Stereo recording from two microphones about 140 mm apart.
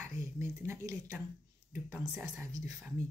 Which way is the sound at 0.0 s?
15° right (ahead or behind).